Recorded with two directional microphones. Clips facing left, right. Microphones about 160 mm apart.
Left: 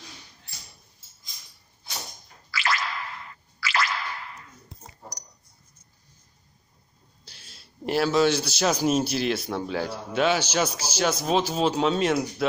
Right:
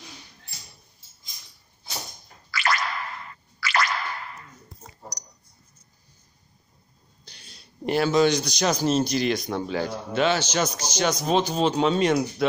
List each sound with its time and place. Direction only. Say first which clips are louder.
2.5 s music: right 2 dB; 55° right (ahead or behind)
7.2 s a man's voice: right 2 dB; centre (ahead or behind)